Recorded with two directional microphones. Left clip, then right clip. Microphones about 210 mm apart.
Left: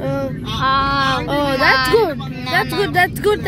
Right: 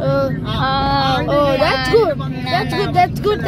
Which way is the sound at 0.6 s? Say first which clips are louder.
Left 1 dB; centre (ahead or behind).